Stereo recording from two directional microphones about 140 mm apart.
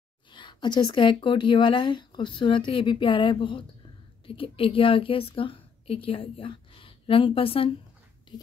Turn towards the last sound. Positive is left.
turn(degrees=40)  # may be behind; listen again after turning